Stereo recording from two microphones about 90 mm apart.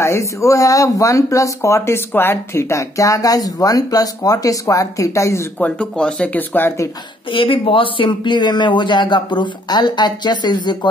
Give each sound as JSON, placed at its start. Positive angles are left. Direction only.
{"t": 0.0, "sound": "speech", "side_deg": 35}
{"t": 5.6, "sound": "speech", "side_deg": 10}
{"t": 7.2, "sound": "speech", "side_deg": 75}